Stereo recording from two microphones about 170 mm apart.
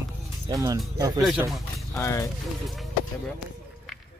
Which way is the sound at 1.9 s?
15° left (ahead or behind).